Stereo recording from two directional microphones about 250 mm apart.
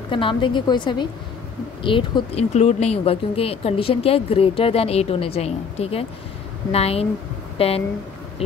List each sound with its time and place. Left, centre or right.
0.1 s speech: centre